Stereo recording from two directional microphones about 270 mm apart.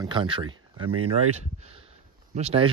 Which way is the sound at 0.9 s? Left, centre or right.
Right.